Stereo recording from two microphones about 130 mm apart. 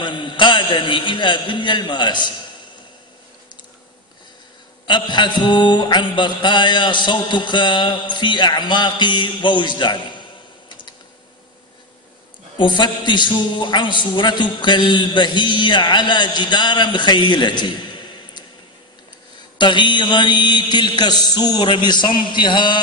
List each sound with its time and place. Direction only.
0.0 s a man's voice: 40° left (ahead or behind)
4.8 s a man's voice: 35° left (ahead or behind)
10.7 s computer keyboard: 35° left (ahead or behind)
12.5 s a man's voice: 35° left (ahead or behind)
19.6 s a man's voice: 35° left (ahead or behind)